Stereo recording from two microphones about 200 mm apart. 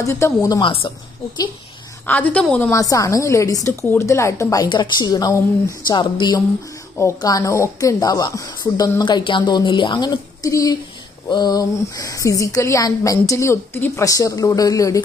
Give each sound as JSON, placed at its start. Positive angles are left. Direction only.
{"t": 0.0, "sound": "speech", "side_deg": 15}
{"t": 2.0, "sound": "a woman's voice", "side_deg": 5}